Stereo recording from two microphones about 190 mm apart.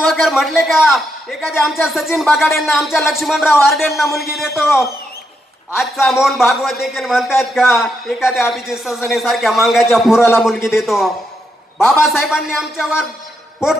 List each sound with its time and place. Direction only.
0.1 s a man's voice: centre (ahead or behind)
6.0 s speech: centre (ahead or behind)